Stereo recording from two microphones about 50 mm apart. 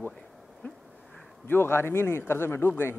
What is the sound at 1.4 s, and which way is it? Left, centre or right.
A man's voice, left.